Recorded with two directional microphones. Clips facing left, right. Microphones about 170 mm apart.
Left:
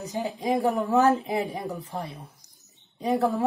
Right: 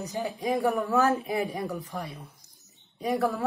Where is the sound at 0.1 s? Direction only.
20° left (ahead or behind).